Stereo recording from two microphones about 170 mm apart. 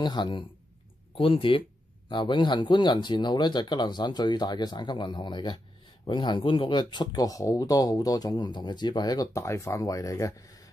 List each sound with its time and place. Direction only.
0.0 s speech: 25° left (ahead or behind)